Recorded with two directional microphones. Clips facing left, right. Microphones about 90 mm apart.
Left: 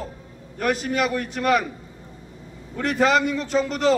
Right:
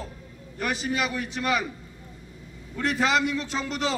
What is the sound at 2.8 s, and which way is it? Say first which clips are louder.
A man's voice: left 4 dB; 45° left (ahead or behind).